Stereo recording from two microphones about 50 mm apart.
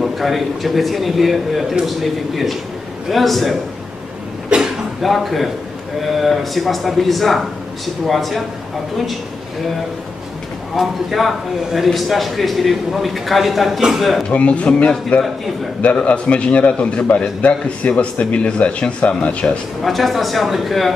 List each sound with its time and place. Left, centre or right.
0.0 s a man's voice: centre
4.5 s speech: centre
5.0 s a man's voice: centre
10.8 s a man's voice: centre
14.3 s a man's voice: left
19.8 s a man's voice: centre